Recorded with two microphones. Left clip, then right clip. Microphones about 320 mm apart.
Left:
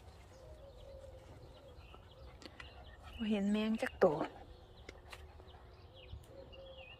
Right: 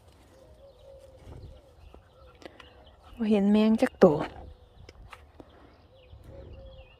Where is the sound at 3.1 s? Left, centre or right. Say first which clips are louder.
Right 13 dB; centre.